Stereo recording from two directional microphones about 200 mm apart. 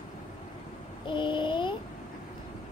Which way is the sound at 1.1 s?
25° left (ahead or behind).